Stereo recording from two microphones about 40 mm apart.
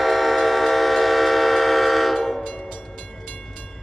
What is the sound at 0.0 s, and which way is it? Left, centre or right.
Train, centre.